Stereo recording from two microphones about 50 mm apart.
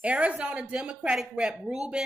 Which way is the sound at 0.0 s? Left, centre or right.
Right.